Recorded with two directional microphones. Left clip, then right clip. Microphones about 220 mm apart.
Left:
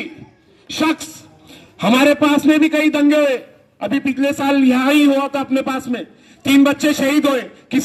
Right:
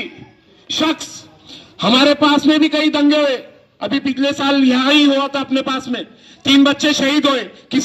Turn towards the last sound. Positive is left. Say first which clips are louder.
# right 1 dB
turn(degrees=50)  # may be behind; listen again after turning